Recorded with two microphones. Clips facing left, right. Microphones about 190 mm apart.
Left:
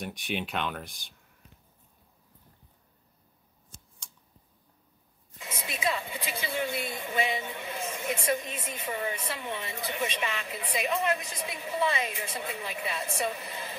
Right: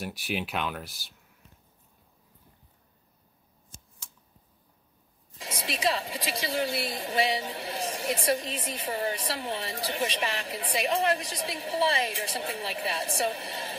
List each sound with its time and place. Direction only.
0.0 s speech: 5° right (ahead or behind)
5.4 s a woman's voice: 30° right (ahead or behind)